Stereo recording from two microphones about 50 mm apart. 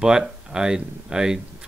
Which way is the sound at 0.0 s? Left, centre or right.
Centre.